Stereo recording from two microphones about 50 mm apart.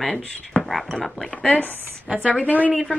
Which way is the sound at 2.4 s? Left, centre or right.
Left.